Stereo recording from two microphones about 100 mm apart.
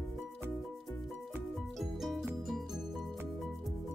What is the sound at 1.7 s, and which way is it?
Music, centre (ahead or behind).